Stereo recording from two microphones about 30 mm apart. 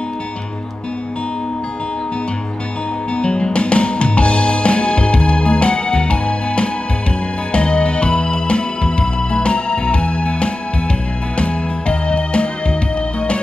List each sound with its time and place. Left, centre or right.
3.2 s music: left